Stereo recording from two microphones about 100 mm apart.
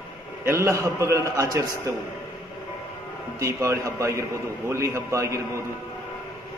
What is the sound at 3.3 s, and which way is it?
A man's voice, 30° right (ahead or behind).